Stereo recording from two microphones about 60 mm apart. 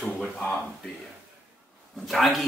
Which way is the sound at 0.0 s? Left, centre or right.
Centre.